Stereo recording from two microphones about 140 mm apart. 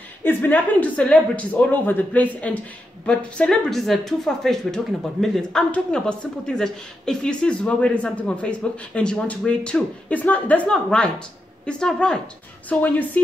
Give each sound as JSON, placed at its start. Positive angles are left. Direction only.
{"t": 0.2, "sound": "a woman's voice", "side_deg": 15}